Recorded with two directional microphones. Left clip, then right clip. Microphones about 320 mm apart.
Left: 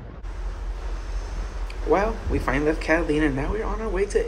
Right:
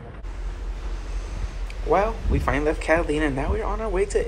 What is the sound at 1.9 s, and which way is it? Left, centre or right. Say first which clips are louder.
Speech: right 1 dB; centre.